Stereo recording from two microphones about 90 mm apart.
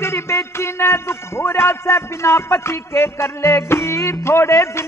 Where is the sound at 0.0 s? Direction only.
30° left (ahead or behind).